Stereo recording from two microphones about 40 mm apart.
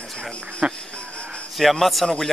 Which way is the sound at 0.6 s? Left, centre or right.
Centre.